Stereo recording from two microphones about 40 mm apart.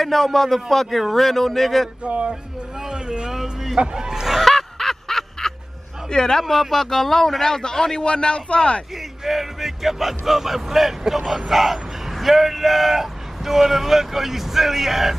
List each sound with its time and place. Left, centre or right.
0.0 s speech: centre
2.0 s speech: right
2.9 s a sound: right
3.7 s speech: centre
4.5 s a sound: centre
6.0 s a man's voice: centre
6.4 s a man's voice: centre; by 8.8 s left
9.2 s speech: centre